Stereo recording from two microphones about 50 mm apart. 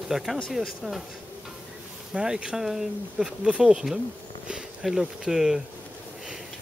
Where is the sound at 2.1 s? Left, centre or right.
Centre.